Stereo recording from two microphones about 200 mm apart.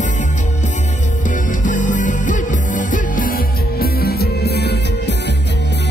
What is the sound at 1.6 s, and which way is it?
Music, 40° left (ahead or behind).